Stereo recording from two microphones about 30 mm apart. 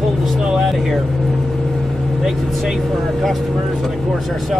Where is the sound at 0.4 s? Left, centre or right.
Right.